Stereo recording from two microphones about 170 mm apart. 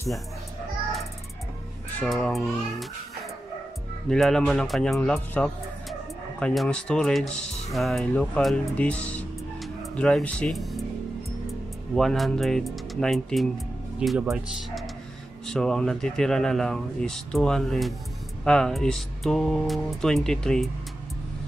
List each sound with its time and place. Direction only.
2.0 s speech: 5° left (ahead or behind)
4.1 s speech: 5° left (ahead or behind)
15.4 s speech: 5° left (ahead or behind)